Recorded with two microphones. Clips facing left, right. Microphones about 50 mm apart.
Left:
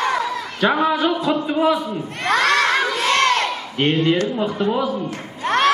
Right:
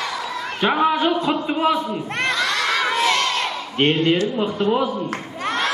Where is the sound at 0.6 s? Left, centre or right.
Centre.